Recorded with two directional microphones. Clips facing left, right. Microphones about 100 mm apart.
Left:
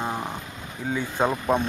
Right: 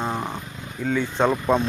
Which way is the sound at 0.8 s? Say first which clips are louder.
Right 4 dB; 30° left (ahead or behind).